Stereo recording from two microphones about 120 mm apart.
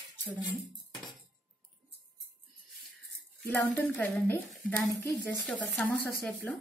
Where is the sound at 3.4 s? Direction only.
15° left (ahead or behind).